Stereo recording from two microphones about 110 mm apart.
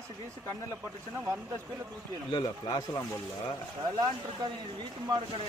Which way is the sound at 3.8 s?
35° right (ahead or behind).